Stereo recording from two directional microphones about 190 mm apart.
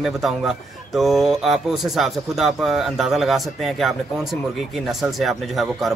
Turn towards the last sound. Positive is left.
turn(degrees=0)  # may be behind; listen again after turning